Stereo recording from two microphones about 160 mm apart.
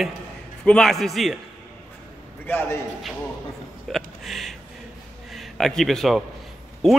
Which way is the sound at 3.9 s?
Centre (ahead or behind).